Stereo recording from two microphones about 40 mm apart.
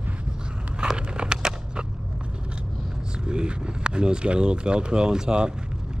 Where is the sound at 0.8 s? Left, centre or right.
Right.